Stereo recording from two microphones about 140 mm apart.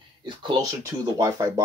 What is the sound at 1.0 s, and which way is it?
Speech, 25° right (ahead or behind).